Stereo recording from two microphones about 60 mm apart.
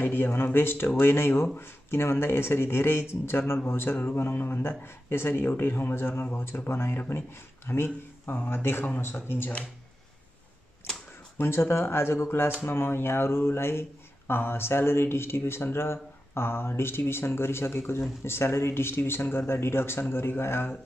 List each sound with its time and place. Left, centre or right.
0.0 s speech: left
11.3 s speech: left